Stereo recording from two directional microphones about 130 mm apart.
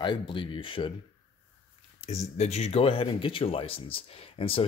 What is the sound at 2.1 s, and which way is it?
Speech, 55° left (ahead or behind).